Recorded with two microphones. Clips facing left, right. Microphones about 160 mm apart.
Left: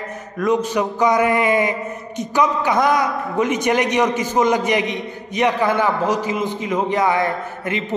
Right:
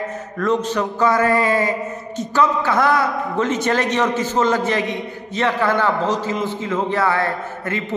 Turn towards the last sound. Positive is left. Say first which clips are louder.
# left 1 dB
turn(degrees=20)  # may be behind; listen again after turning